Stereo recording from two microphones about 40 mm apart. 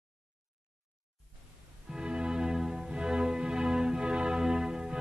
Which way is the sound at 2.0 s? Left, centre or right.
Right.